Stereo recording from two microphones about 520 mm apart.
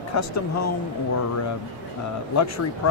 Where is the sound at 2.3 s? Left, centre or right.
Left.